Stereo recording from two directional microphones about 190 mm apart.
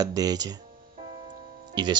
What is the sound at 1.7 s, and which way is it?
Speech, 25° right (ahead or behind).